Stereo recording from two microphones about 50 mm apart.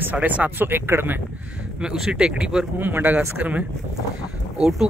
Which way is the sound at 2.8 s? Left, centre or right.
Right.